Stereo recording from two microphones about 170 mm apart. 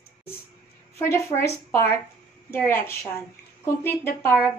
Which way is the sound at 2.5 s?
10° left (ahead or behind).